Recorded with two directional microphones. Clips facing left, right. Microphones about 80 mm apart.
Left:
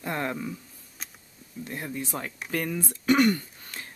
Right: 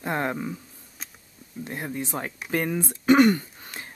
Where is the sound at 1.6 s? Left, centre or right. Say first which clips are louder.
Right 2 dB; right.